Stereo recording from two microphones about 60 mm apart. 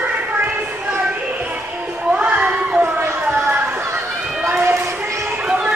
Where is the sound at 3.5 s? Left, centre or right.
Right.